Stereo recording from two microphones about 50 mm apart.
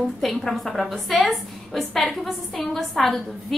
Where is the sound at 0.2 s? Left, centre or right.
Centre.